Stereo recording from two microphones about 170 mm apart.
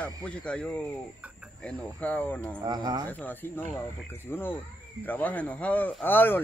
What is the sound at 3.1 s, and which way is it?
Speech, 10° left (ahead or behind).